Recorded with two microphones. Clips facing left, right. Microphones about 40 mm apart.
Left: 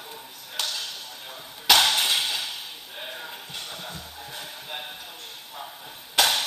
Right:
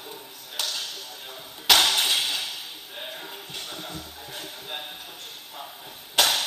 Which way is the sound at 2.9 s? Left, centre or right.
Centre.